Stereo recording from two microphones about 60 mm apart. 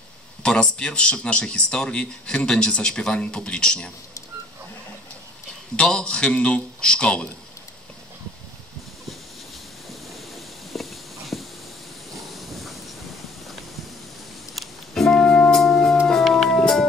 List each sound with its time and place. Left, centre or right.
0.4 s speech: centre
5.8 s speech: centre
10.7 s a sound: centre
12.4 s train: centre
14.5 s music: centre